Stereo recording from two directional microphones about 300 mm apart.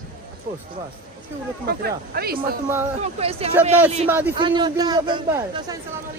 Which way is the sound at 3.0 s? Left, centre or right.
Centre.